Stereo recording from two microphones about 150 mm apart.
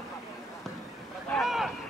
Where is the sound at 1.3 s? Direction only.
Centre (ahead or behind).